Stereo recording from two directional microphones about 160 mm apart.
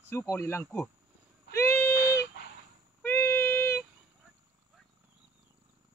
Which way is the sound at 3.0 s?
15° left (ahead or behind).